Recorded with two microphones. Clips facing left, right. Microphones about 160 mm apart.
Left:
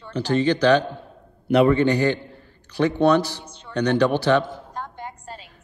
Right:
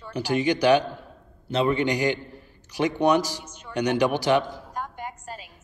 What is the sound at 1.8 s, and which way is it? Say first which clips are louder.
A man's voice: left 4 dB; 15° right (ahead or behind).